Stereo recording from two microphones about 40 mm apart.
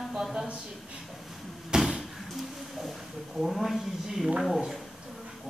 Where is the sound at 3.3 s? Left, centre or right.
Centre.